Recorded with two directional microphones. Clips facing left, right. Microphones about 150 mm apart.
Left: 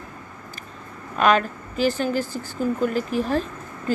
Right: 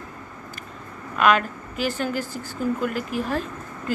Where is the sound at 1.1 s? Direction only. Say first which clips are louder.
Left 1 dB; 35° left (ahead or behind).